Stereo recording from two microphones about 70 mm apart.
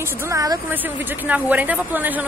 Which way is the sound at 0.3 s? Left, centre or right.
Right.